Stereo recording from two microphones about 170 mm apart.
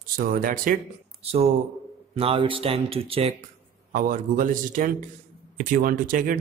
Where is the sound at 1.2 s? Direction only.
35° right (ahead or behind).